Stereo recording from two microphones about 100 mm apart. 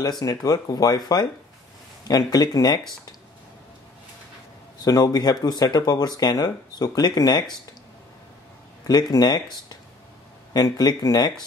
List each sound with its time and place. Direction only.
0.2 s speech: 35° left (ahead or behind)
4.8 s speech: 40° left (ahead or behind)
8.8 s speech: 40° left (ahead or behind)
10.5 s speech: 40° left (ahead or behind)